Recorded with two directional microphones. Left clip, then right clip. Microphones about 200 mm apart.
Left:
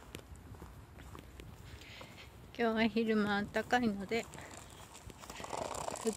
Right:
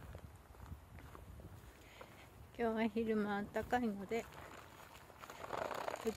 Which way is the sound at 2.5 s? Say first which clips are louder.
Left 5 dB; centre (ahead or behind).